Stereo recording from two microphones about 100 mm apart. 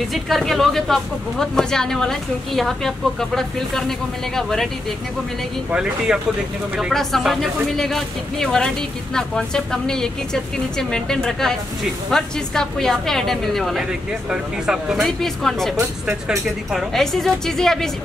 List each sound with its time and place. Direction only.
0.1 s speech: centre (ahead or behind)
5.7 s speech: 5° right (ahead or behind)
15.0 s speech: 5° left (ahead or behind)
15.7 s speech: 25° right (ahead or behind)
16.3 s speech: centre (ahead or behind)